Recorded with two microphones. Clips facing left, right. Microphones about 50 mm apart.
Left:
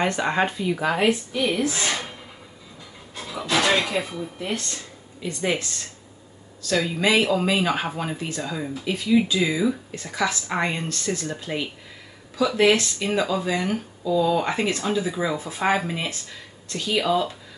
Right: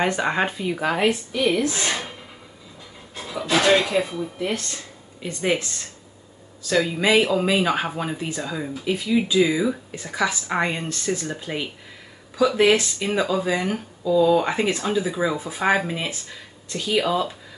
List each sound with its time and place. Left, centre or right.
0.0 s speech: centre
1.0 s speech: centre
3.2 s speech: centre
5.2 s speech: right
6.7 s speech: centre
12.7 s speech: centre
14.0 s speech: centre